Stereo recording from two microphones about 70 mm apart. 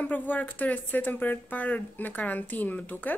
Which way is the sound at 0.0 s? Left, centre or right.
Left.